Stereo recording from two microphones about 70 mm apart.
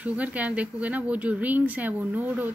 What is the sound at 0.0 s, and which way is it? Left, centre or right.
Speech, right.